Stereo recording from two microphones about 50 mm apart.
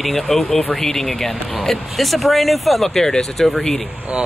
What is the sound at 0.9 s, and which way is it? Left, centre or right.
Speech, centre.